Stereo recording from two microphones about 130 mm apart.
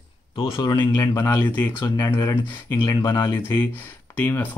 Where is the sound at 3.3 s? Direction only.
20° left (ahead or behind).